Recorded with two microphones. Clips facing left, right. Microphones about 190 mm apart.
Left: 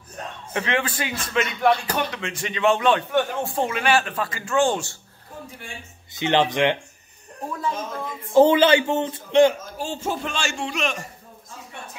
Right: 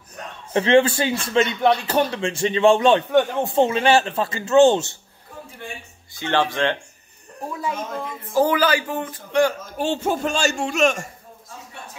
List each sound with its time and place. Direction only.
0.5 s speech: 30° right (ahead or behind)
6.1 s speech: 20° left (ahead or behind)
8.3 s speech: 25° left (ahead or behind)
9.8 s a man's voice: 65° right (ahead or behind); by 11.1 s 45° right (ahead or behind)